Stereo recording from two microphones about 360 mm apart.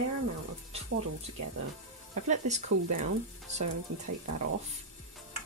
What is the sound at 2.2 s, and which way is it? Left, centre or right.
A woman's voice, centre.